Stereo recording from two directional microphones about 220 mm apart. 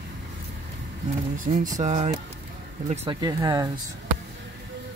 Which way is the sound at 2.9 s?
20° right (ahead or behind).